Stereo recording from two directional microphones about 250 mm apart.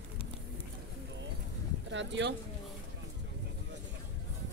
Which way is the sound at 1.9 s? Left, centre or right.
Right.